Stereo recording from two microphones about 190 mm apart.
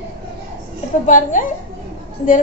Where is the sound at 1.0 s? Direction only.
40° left (ahead or behind).